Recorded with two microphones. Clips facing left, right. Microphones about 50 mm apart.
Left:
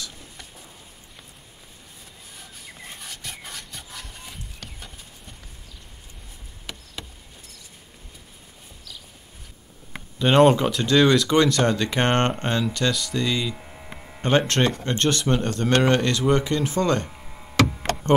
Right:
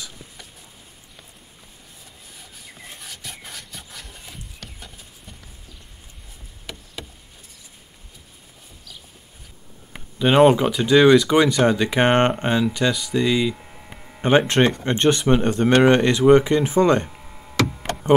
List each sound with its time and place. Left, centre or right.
2.3 s wood: centre
6.6 s a sound: centre
10.1 s speech: centre
13.6 s a sound: centre
14.6 s speech: right
17.2 s knock: centre